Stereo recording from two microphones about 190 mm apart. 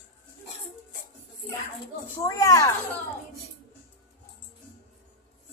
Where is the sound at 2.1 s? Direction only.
15° left (ahead or behind).